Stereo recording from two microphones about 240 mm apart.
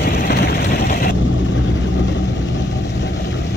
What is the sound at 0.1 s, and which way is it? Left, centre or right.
Vehicle, left.